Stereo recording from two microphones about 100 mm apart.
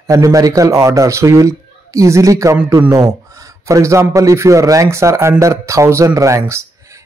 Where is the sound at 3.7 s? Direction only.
30° right (ahead or behind).